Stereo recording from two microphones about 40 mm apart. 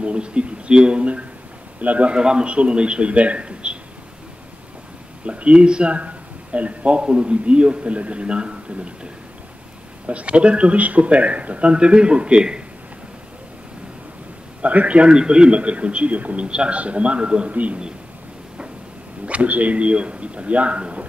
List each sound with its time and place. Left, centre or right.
0.0 s a man's voice: right
2.1 s speech: right
5.2 s speech: right
10.0 s speech: right
14.6 s a man's voice: right
16.4 s speech: right
17.5 s a man's voice: right
19.2 s a man's voice: right